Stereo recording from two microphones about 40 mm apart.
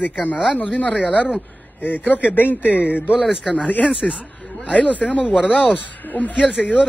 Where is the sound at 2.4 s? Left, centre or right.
Left.